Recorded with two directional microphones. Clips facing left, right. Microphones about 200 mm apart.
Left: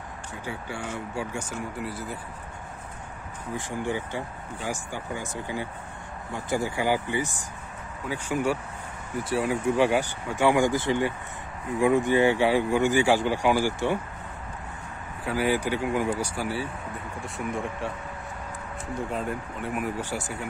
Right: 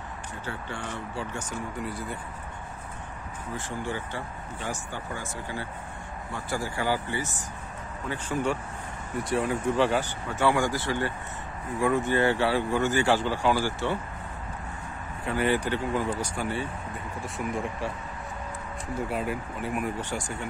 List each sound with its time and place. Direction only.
0.5 s speech: 10° left (ahead or behind)
3.5 s speech: 15° left (ahead or behind)
15.2 s speech: 5° left (ahead or behind)
18.9 s speech: 5° right (ahead or behind)